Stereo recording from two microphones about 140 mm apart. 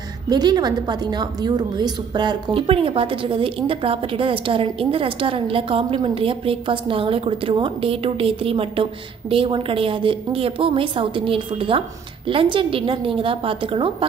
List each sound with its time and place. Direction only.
0.3 s a woman's voice: 30° right (ahead or behind)